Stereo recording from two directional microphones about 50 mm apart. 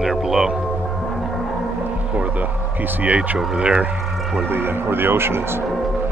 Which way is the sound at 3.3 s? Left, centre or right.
Centre.